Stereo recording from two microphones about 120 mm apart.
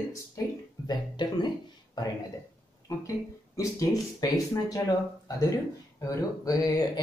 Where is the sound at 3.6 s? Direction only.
30° left (ahead or behind).